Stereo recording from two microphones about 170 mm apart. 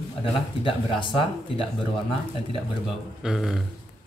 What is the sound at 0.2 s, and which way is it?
Speech, 30° left (ahead or behind).